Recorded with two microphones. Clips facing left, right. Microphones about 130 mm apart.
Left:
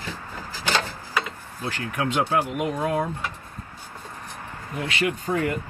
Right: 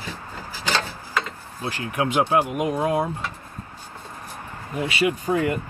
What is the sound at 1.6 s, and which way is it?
Speech, 15° right (ahead or behind).